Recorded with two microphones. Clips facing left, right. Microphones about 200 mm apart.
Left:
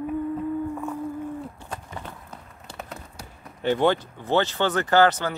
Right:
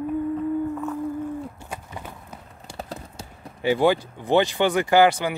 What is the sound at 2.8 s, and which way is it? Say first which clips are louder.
Clip-clop: right 4 dB; 30° right (ahead or behind).